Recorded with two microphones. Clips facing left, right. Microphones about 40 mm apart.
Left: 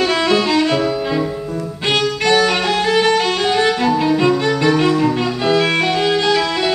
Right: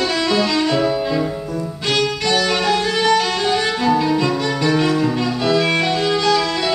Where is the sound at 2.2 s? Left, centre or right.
Left.